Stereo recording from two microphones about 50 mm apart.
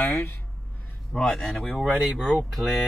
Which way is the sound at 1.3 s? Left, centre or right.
Centre.